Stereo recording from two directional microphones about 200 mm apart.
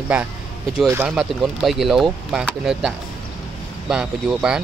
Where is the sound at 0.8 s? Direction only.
5° right (ahead or behind).